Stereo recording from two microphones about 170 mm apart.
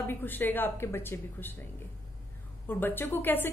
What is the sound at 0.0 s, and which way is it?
A woman's voice, 10° left (ahead or behind).